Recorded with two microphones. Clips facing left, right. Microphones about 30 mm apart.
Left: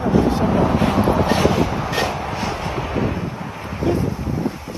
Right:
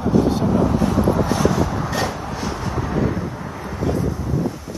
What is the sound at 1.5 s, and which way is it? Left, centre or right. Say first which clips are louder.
Train: left 1 dB; left.